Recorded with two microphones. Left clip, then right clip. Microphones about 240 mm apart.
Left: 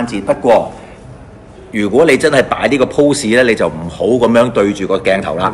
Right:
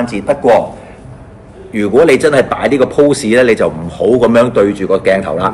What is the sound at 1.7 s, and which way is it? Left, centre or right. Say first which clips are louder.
Speech: right 2 dB; centre.